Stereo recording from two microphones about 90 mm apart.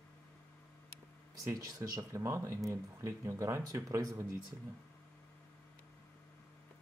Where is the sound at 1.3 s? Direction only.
40° right (ahead or behind).